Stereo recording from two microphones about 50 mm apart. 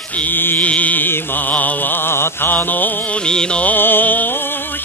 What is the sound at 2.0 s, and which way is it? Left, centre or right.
Music, left.